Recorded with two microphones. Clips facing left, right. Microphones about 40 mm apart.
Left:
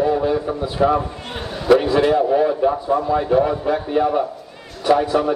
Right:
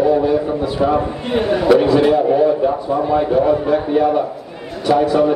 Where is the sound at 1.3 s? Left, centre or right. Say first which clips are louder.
Right 12 dB; right.